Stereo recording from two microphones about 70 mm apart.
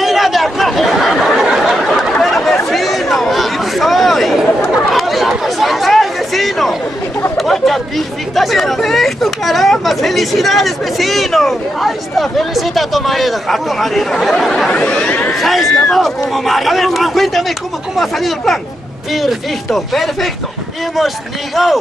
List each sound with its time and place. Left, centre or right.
0.0 s chatter: centre
1.2 s a sound: centre
2.1 s chatter: centre
8.4 s speech: centre
15.3 s speech: centre
19.7 s speech: centre